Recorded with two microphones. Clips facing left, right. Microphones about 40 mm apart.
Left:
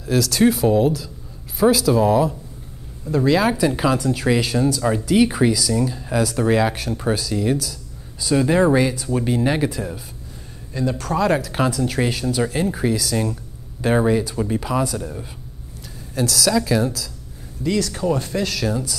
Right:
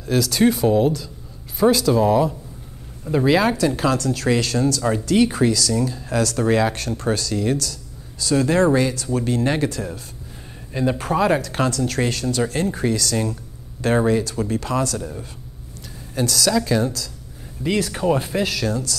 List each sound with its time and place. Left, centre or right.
0.0 s speech: centre
3.1 s speech: right
3.5 s speech: centre
10.7 s speech: right
11.2 s speech: centre
17.6 s speech: right
18.5 s speech: centre